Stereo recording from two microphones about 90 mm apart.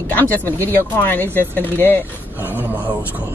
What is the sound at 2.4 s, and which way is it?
Speech, 20° right (ahead or behind).